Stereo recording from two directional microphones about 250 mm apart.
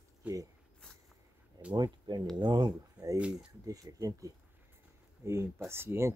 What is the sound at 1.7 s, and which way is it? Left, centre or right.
Speech, centre.